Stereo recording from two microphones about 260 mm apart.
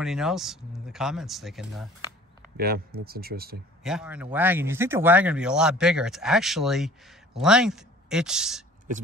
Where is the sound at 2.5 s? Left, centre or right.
Right.